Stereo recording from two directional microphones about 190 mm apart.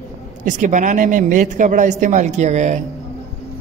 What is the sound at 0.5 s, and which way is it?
A woman's voice, 40° right (ahead or behind).